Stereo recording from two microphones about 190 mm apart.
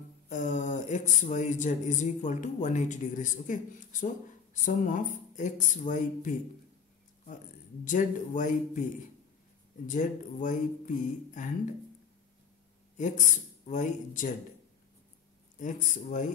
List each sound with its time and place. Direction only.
0.3 s speech: 40° left (ahead or behind)
7.8 s speech: 45° left (ahead or behind)
9.8 s speech: 45° left (ahead or behind)
12.9 s speech: 40° left (ahead or behind)
15.6 s speech: 40° left (ahead or behind)